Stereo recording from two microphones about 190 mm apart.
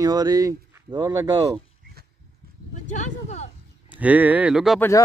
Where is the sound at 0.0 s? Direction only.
20° right (ahead or behind).